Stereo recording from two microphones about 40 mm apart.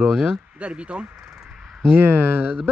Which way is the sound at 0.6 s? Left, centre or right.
Right.